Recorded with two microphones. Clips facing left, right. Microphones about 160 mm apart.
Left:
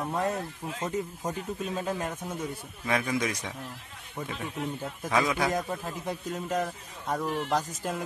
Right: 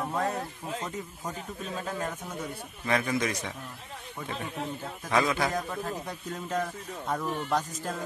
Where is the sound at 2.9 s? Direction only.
10° left (ahead or behind).